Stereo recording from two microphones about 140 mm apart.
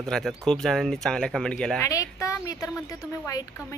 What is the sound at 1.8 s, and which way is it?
A woman's voice, 25° left (ahead or behind).